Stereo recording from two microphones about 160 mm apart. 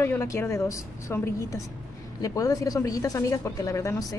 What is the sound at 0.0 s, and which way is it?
A woman's voice, 15° left (ahead or behind).